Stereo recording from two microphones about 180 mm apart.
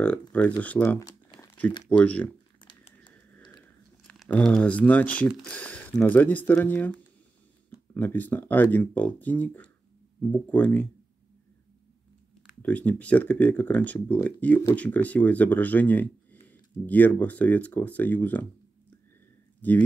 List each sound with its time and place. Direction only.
0.3 s speech: 10° left (ahead or behind)
2.6 s a sound: 25° left (ahead or behind)
4.1 s speech: 5° left (ahead or behind)
12.6 s speech: 10° left (ahead or behind)
19.6 s speech: 10° left (ahead or behind)